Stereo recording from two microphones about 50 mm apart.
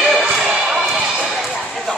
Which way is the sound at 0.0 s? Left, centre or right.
Centre.